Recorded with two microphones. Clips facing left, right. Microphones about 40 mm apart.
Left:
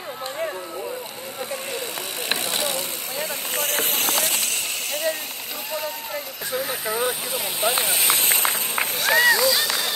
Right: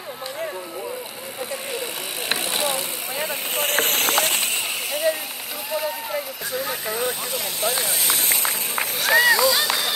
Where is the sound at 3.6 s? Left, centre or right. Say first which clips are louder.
Right 4 dB; right.